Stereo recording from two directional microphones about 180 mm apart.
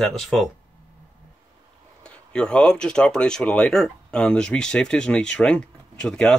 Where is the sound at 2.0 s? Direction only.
5° left (ahead or behind).